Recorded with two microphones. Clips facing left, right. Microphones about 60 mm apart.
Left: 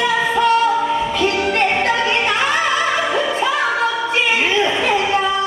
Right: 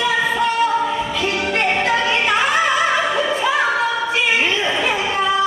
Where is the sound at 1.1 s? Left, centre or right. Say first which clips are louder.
Left 3 dB; left.